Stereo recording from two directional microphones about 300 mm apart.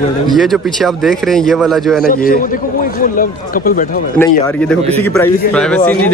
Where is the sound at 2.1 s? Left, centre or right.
Left.